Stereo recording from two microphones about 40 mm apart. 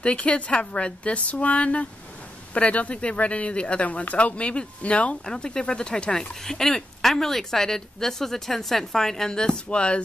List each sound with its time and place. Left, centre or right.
0.0 s speech: left
5.2 s speech: centre
9.7 s speech: left